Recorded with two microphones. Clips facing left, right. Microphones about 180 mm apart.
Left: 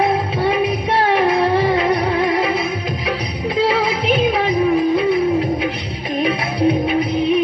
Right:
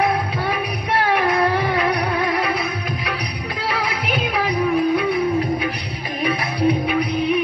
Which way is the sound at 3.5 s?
25° left (ahead or behind).